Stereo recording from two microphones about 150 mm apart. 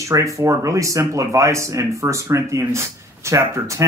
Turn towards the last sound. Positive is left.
turn(degrees=-20)  # may be behind; listen again after turning